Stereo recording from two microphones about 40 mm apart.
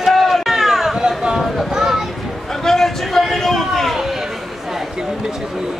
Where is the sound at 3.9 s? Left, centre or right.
Centre.